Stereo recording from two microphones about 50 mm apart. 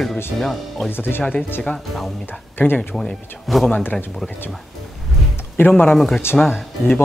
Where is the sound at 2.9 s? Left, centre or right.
Centre.